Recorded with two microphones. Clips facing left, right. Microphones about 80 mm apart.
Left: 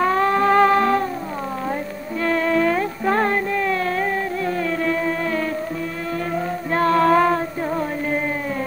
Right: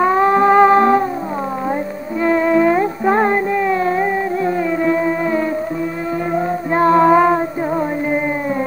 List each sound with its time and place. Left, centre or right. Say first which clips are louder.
0.0 s music: right 5 dB; centre
2.2 s music: right 5 dB; centre
6.3 s female singing: right 6 dB; right